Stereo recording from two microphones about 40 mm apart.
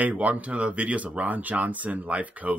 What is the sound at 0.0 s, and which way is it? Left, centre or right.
Speech, right.